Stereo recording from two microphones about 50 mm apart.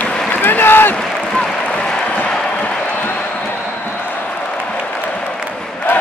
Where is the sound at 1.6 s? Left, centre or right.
Left.